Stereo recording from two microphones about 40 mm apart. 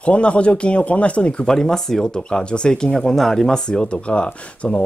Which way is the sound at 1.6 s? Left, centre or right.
Centre.